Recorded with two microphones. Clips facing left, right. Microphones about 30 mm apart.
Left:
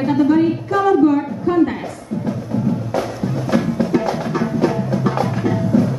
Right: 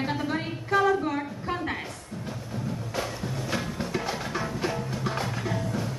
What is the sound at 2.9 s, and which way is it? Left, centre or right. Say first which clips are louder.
Music: left 10 dB; centre.